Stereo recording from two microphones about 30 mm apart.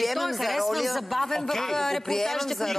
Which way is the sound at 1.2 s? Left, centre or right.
Centre.